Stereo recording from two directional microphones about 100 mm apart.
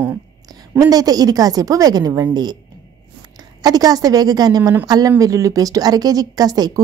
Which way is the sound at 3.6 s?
40° right (ahead or behind).